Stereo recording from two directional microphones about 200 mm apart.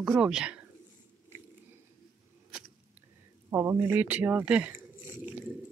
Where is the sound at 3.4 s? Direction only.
15° right (ahead or behind).